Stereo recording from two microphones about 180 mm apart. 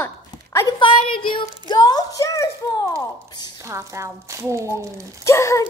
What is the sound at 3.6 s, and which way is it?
A woman's voice, 15° right (ahead or behind).